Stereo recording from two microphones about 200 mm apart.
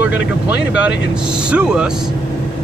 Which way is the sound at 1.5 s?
5° right (ahead or behind).